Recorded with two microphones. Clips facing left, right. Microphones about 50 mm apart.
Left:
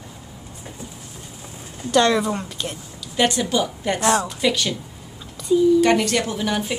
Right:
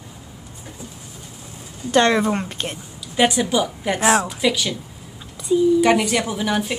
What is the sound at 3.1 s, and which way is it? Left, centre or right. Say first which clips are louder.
A woman's voice: right 2 dB; centre.